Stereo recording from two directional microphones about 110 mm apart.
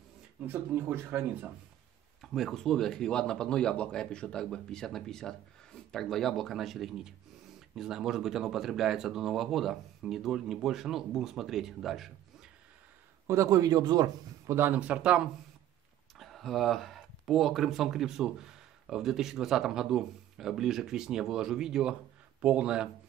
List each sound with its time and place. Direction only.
0.5 s speech: 20° right (ahead or behind)
2.2 s speech: centre (ahead or behind)
13.3 s a man's voice: 30° right (ahead or behind)
14.4 s a sound: 25° right (ahead or behind)
14.7 s speech: 10° right (ahead or behind)
16.2 s speech: centre (ahead or behind)